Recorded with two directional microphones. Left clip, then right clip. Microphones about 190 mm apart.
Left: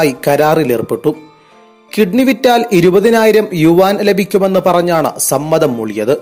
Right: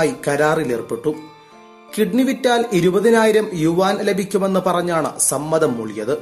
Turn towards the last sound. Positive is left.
turn(degrees=35)  # may be behind; listen again after turning